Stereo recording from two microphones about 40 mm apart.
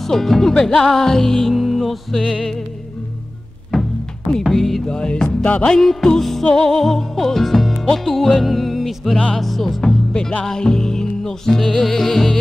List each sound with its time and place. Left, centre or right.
0.0 s music: centre
4.5 s music: centre
4.8 s music: centre
5.7 s music: centre